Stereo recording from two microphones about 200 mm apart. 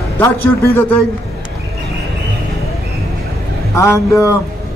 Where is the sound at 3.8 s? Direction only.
15° left (ahead or behind).